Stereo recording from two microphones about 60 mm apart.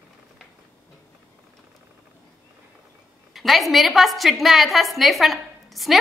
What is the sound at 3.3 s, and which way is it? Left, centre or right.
A woman's voice, centre.